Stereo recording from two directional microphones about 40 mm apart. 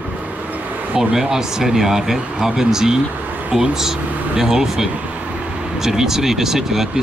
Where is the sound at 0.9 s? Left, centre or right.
Centre.